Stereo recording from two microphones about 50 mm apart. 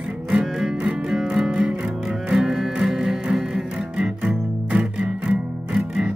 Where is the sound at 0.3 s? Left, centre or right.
Centre.